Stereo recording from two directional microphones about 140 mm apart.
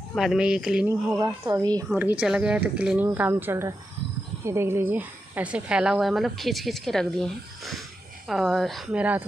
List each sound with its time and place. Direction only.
0.1 s a woman's voice: 5° right (ahead or behind)
0.8 s speech: 20° right (ahead or behind)
2.0 s a woman's voice: 10° right (ahead or behind)